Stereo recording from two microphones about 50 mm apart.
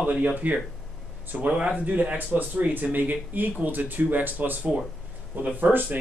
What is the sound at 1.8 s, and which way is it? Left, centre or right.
Speech, right.